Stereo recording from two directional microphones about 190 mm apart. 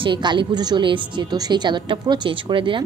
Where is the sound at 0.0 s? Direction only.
25° right (ahead or behind).